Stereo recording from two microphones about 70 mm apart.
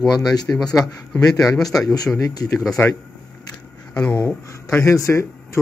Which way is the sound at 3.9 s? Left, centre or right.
Centre.